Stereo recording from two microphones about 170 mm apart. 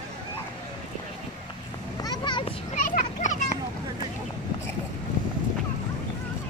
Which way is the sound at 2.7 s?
50° left (ahead or behind).